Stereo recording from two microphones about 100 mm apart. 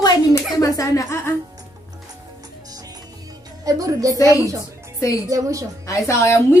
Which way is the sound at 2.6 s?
40° right (ahead or behind).